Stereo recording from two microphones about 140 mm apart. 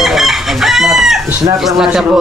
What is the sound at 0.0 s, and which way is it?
Chicken, centre (ahead or behind).